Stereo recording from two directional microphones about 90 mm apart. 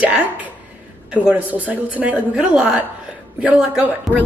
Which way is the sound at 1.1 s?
15° right (ahead or behind).